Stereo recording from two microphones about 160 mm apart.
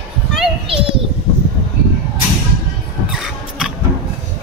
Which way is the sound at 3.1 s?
5° right (ahead or behind).